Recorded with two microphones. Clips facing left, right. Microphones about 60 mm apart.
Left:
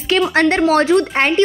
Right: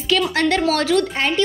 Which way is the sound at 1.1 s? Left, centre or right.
Left.